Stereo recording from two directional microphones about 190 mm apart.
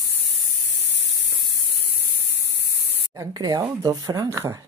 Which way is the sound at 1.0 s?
65° right (ahead or behind).